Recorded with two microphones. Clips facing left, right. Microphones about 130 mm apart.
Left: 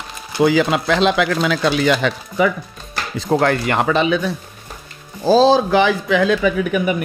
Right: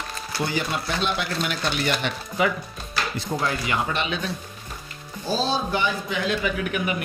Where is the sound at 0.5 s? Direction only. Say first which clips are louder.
Left 12 dB; 90° left.